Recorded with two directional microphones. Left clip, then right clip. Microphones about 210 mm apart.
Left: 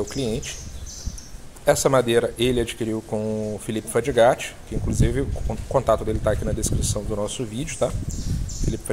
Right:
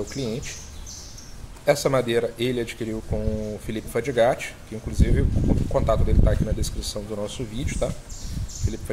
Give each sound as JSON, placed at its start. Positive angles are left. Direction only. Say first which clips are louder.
{"t": 0.0, "sound": "speech", "louder": "left 3 dB", "side_deg": 20}
{"t": 1.7, "sound": "speech", "louder": "left 3 dB", "side_deg": 25}